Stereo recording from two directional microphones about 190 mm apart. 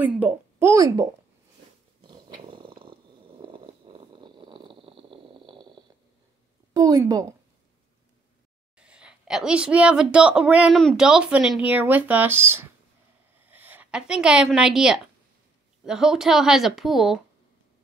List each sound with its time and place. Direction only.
0.0 s a child's voice: 10° right (ahead or behind)
2.0 s purr: 25° right (ahead or behind)
6.7 s a woman's voice: 20° right (ahead or behind)
8.7 s a woman's voice: 5° right (ahead or behind)